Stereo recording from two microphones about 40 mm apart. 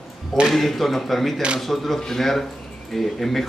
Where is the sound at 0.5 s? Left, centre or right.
Centre.